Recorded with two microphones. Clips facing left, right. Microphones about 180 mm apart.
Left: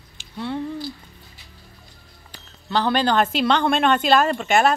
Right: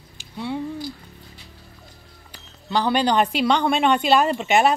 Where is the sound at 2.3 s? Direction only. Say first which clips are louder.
Even; 10° right (ahead or behind).